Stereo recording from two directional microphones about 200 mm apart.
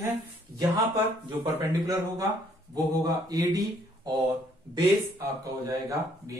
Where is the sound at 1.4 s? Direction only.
15° right (ahead or behind).